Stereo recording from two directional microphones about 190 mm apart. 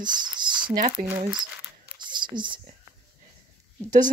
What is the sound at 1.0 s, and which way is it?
Speech, 45° right (ahead or behind).